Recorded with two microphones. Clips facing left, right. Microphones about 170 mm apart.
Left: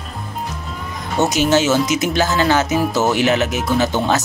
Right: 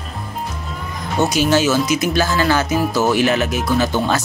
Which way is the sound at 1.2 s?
20° left (ahead or behind).